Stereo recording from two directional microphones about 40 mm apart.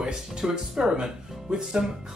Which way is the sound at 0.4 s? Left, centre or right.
Centre.